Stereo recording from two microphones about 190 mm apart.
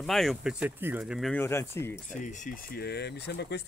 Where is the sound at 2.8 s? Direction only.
60° left (ahead or behind).